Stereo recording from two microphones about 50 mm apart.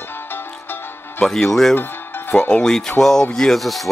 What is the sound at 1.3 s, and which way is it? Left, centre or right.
Speech, centre.